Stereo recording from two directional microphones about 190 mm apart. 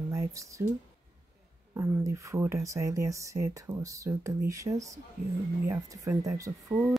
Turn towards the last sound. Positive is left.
turn(degrees=-15)  # may be behind; listen again after turning